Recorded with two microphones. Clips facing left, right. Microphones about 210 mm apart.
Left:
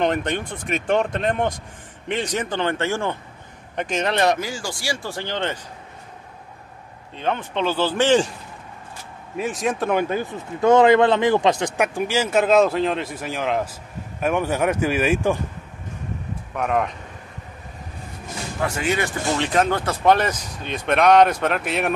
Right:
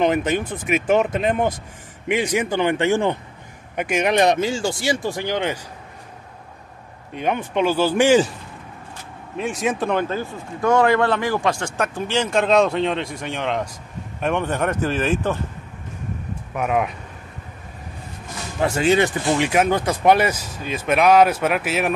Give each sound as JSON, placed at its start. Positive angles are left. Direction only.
{"t": 0.0, "sound": "speech", "side_deg": -5}
{"t": 7.2, "sound": "speech", "side_deg": -10}
{"t": 9.4, "sound": "speech", "side_deg": 0}
{"t": 9.9, "sound": "speech", "side_deg": 15}
{"t": 16.5, "sound": "speech", "side_deg": -5}
{"t": 18.6, "sound": "speech", "side_deg": -25}
{"t": 19.3, "sound": "speech", "side_deg": -10}